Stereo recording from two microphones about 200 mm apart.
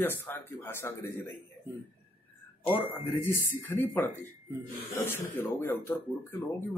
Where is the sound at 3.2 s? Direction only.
10° left (ahead or behind).